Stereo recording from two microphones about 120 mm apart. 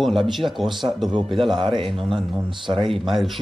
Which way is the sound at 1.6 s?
45° right (ahead or behind).